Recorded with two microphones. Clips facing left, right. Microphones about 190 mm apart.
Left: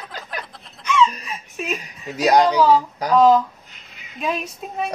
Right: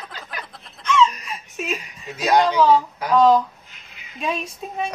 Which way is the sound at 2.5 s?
Centre (ahead or behind).